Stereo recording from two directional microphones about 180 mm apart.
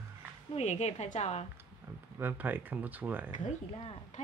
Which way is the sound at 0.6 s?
40° left (ahead or behind).